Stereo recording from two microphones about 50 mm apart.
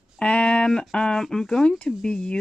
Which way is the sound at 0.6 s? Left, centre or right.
Centre.